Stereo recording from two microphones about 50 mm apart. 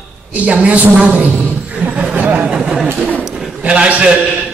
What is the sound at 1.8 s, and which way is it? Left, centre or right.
Speech, centre.